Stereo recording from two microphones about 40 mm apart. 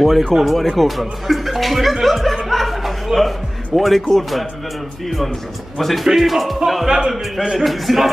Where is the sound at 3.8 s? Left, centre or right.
Centre.